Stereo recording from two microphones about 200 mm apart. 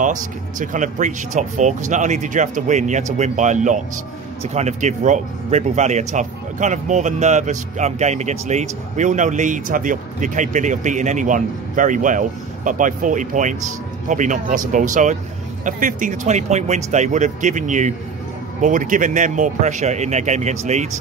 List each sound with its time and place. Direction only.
0.0 s speech: 40° right (ahead or behind)